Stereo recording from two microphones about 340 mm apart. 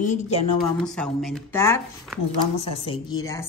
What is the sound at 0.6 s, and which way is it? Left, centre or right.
A woman's voice, centre.